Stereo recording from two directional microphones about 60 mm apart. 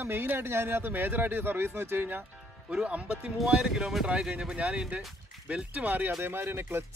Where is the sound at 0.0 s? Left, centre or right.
Right.